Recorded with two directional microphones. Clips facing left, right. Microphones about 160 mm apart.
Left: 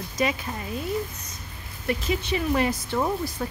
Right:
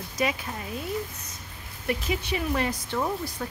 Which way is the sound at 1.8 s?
10° right (ahead or behind).